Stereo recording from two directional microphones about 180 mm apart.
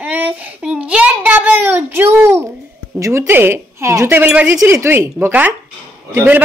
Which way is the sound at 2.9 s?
15° right (ahead or behind).